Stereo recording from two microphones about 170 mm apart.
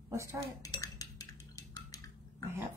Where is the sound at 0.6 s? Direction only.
20° left (ahead or behind).